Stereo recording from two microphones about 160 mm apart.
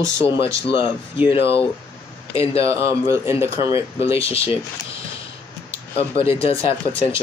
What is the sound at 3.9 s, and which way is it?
Speech, 40° left (ahead or behind).